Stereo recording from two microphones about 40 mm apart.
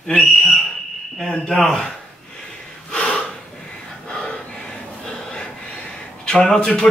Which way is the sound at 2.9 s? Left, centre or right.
Centre.